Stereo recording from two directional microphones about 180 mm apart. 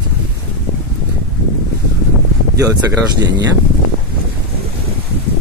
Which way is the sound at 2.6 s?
15° right (ahead or behind).